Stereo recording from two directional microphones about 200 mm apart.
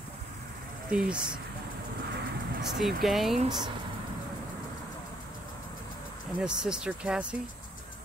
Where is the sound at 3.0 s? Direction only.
Centre (ahead or behind).